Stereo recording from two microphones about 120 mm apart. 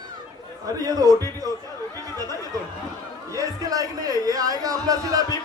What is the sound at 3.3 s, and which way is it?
A man's voice, 30° right (ahead or behind).